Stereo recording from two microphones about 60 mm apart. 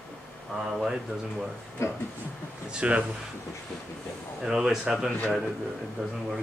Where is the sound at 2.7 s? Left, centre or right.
Right.